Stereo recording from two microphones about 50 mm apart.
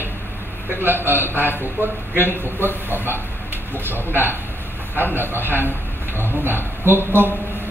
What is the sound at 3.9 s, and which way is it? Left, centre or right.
A man's voice, right.